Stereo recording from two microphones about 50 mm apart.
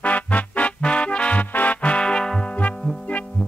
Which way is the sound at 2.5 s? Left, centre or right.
Left.